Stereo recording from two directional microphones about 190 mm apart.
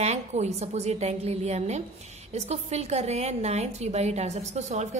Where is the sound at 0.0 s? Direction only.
35° right (ahead or behind).